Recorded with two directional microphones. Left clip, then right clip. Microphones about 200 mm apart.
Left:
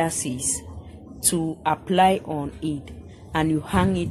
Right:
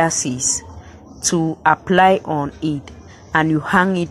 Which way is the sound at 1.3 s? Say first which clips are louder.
Right 8 dB; 15° right (ahead or behind).